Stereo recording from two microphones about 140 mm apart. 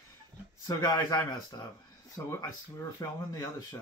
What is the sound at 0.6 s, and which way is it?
Speech, 25° left (ahead or behind).